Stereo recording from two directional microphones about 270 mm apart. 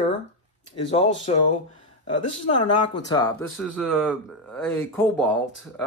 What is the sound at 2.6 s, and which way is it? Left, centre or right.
Speech, centre.